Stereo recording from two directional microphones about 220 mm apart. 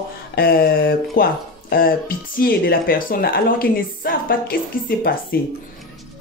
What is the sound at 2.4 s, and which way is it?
Speech, 40° left (ahead or behind).